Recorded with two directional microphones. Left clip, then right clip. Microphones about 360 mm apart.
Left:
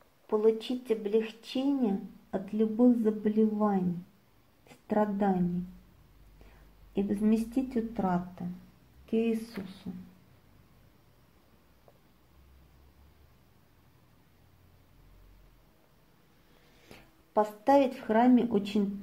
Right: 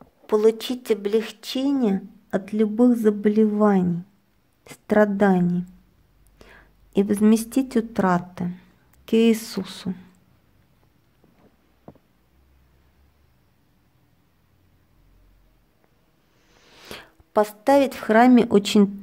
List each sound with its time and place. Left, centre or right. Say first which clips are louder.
0.3 s speech: right 8 dB; right
6.9 s speech: right 10 dB; right
16.8 s speech: right 16 dB; centre